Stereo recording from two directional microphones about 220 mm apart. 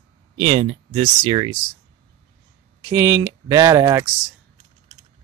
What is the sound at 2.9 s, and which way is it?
Speech, 15° right (ahead or behind).